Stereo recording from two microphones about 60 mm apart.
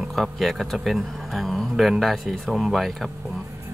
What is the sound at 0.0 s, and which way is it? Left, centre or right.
Speech, centre.